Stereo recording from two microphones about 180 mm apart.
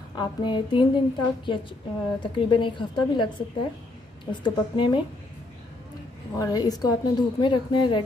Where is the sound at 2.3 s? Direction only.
30° left (ahead or behind).